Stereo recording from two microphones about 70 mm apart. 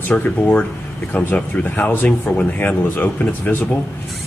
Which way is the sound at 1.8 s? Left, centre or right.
Left.